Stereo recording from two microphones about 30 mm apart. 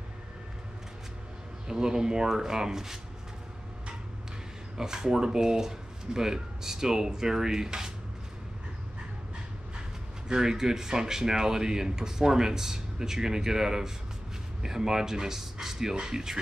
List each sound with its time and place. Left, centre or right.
1.7 s speech: right
4.7 s speech: centre
10.2 s speech: right